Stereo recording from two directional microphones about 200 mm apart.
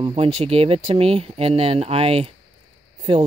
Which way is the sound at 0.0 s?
30° right (ahead or behind).